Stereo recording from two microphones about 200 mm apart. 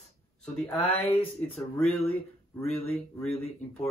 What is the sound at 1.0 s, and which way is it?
Speech, 30° left (ahead or behind).